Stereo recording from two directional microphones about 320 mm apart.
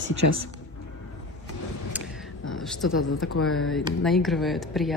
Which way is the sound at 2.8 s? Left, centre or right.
Left.